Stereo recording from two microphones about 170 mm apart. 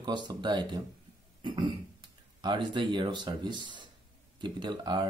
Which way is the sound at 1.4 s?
25° right (ahead or behind).